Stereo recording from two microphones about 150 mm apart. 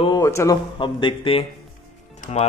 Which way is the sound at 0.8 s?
35° left (ahead or behind).